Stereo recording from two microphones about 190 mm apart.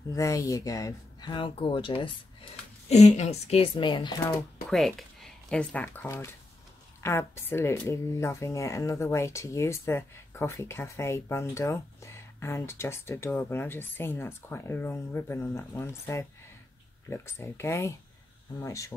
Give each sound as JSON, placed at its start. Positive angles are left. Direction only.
{"t": 0.1, "sound": "speech", "side_deg": 15}
{"t": 4.6, "sound": "speech", "side_deg": 0}